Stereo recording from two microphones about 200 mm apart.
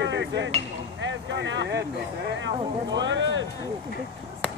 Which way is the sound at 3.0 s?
65° right (ahead or behind).